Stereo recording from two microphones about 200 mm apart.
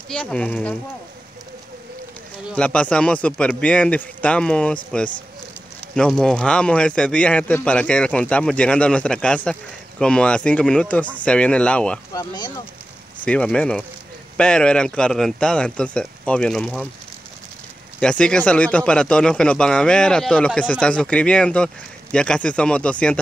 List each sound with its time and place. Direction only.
0.1 s speech: 5° left (ahead or behind)
2.5 s speech: 5° left (ahead or behind)
5.9 s speech: 5° left (ahead or behind)
12.1 s speech: 20° left (ahead or behind)
13.2 s speech: 5° left (ahead or behind)
18.0 s speech: 5° left (ahead or behind)